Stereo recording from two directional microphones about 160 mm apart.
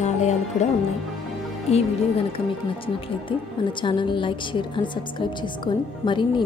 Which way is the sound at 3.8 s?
30° left (ahead or behind).